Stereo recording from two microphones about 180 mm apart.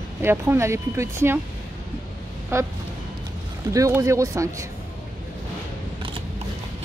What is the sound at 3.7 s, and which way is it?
Speech, 15° right (ahead or behind).